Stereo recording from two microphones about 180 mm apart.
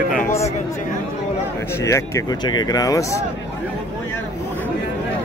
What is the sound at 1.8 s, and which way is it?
Speech, 15° left (ahead or behind).